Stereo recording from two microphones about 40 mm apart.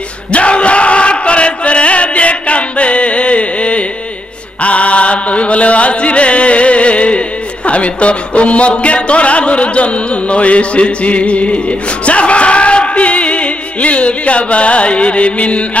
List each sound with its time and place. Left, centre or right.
0.3 s chant: left
12.1 s music: left